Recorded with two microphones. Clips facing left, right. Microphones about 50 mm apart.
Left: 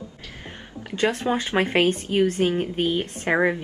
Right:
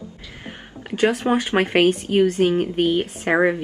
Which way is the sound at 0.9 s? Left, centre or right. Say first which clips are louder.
Right 4 dB; centre.